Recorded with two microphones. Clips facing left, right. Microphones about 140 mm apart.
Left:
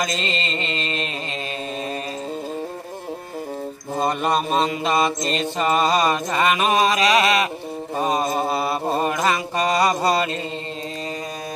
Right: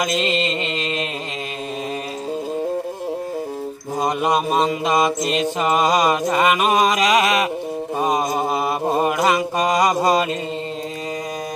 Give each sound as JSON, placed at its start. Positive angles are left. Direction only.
{"t": 0.0, "sound": "mantra", "side_deg": -10}
{"t": 4.0, "sound": "mantra", "side_deg": -15}